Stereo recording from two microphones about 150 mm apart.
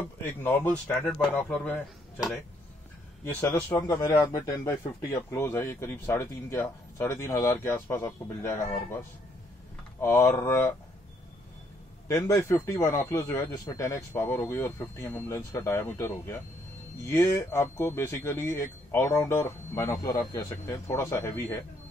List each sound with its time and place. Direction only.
0.2 s speech: 15° left (ahead or behind)
3.3 s speech: 15° left (ahead or behind)
9.9 s speech: 15° left (ahead or behind)
12.1 s speech: 20° left (ahead or behind)